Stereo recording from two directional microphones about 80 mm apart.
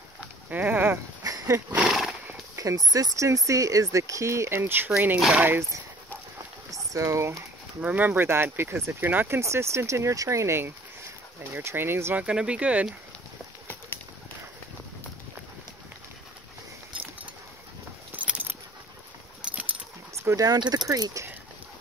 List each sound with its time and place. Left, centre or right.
0.5 s a sound: right
1.2 s wild animals: right
3.2 s speech: right
6.7 s speech: right
7.8 s speech: right
9.4 s speech: right
12.2 s speech: centre
18.1 s keys jangling: centre
20.2 s speech: right
20.5 s speech: right